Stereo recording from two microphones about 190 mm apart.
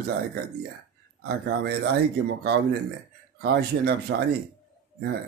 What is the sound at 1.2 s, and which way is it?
Speech, 60° right (ahead or behind).